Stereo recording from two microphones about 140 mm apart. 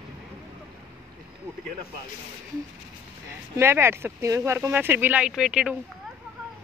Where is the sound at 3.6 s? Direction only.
20° right (ahead or behind).